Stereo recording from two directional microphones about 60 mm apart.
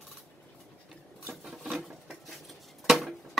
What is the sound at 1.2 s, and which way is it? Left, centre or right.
Patter, centre.